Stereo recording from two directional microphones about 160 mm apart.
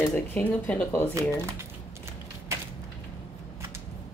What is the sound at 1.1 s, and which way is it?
Speech, 15° right (ahead or behind).